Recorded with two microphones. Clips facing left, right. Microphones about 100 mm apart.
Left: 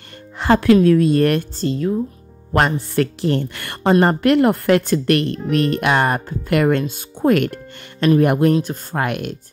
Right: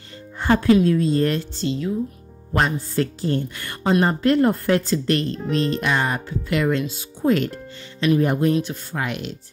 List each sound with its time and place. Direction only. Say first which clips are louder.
0.4 s speech: left 3 dB; 85° left
0.8 s speech: left 5 dB; 65° left (ahead or behind)
1.6 s speech: left 4 dB; 45° left (ahead or behind)
2.5 s a woman's voice: left 4 dB; 65° left (ahead or behind)
3.9 s a woman's voice: left 4 dB; 60° left (ahead or behind)
8.6 s speech: left 5 dB; 55° left (ahead or behind)